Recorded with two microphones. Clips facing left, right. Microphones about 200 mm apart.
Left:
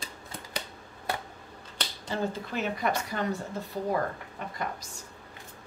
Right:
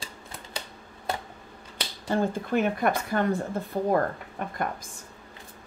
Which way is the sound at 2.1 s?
50° right (ahead or behind).